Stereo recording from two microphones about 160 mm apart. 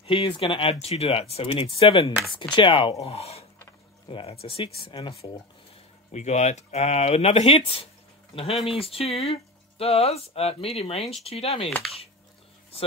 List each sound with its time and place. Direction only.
0.0 s speech: 30° left (ahead or behind)